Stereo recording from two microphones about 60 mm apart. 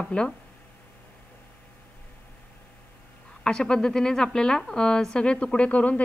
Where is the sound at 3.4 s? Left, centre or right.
Centre.